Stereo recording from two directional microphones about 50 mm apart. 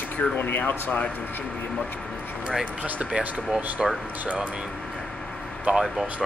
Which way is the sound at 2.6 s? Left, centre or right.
Right.